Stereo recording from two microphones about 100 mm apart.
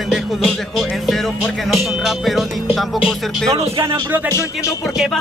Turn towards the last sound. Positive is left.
turn(degrees=-30)  # may be behind; listen again after turning